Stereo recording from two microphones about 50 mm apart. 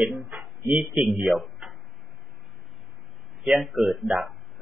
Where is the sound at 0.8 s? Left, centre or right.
Centre.